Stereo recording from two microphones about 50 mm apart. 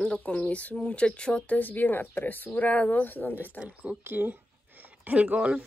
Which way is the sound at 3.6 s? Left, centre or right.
Right.